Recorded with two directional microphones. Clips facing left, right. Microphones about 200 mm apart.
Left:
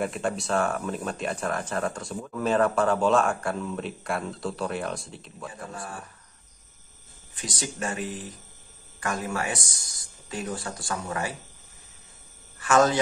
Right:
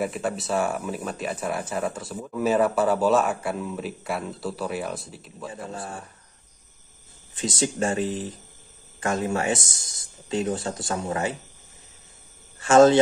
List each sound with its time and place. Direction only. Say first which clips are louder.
0.0 s speech: right 1 dB; 5° right (ahead or behind)
5.7 s speech: right 3 dB; 25° right (ahead or behind)
7.3 s speech: right 8 dB; 25° right (ahead or behind)
12.5 s speech: right 6 dB; 25° right (ahead or behind)